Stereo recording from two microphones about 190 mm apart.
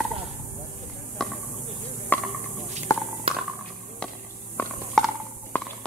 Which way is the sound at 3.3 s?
30° right (ahead or behind).